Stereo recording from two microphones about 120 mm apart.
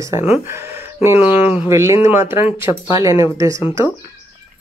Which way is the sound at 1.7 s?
25° right (ahead or behind).